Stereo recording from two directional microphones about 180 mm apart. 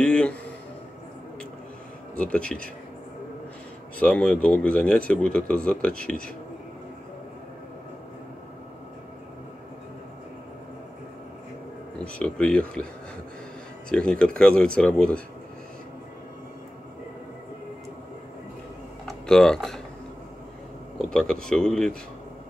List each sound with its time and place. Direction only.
0.0 s a sound: 5° left (ahead or behind)
2.1 s speech: 5° left (ahead or behind)
4.0 s speech: 5° left (ahead or behind)
12.0 s speech: 5° left (ahead or behind)
13.8 s speech: 5° left (ahead or behind)
19.0 s speech: 5° left (ahead or behind)
21.0 s speech: 5° left (ahead or behind)